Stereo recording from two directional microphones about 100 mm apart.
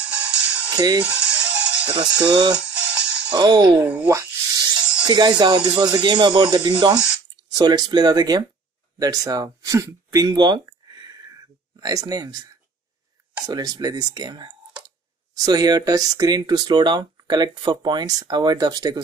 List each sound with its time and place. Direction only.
0.0 s music: 10° right (ahead or behind)
0.7 s speech: 40° right (ahead or behind)
1.0 s music: 10° right (ahead or behind)
2.0 s speech: 45° right (ahead or behind)
2.5 s music: 10° right (ahead or behind)
3.3 s speech: 50° right (ahead or behind)
3.8 s speech: 15° right (ahead or behind)
4.1 s a sound: 35° right (ahead or behind)
5.0 s speech: 45° right (ahead or behind); by 10.2 s 30° right (ahead or behind)
10.2 s a sound: 45° right (ahead or behind)
11.8 s speech: 40° right (ahead or behind)
13.4 s speech: 40° right (ahead or behind)